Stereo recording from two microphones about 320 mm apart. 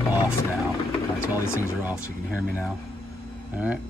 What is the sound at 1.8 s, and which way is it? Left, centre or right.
Speech, centre.